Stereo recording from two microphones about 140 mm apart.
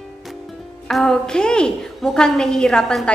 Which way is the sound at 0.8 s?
Centre (ahead or behind).